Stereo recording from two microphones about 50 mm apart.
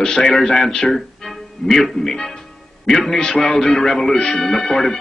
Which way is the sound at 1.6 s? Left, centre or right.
Centre.